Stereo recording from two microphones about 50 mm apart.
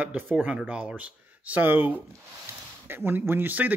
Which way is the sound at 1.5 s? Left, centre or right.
Right.